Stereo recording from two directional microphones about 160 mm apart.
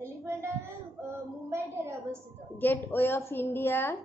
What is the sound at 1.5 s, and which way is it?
Speech, 15° right (ahead or behind).